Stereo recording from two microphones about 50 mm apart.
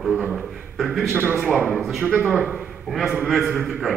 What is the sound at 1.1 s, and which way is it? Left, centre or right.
Speech, right.